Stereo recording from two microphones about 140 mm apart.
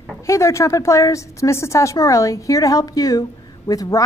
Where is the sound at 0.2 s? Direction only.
20° left (ahead or behind).